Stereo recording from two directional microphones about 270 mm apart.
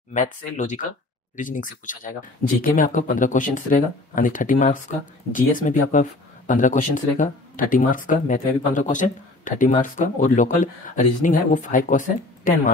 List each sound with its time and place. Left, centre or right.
0.1 s speech: left